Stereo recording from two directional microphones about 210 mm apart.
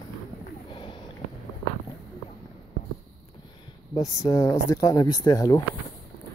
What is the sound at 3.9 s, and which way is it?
Speech, 15° left (ahead or behind).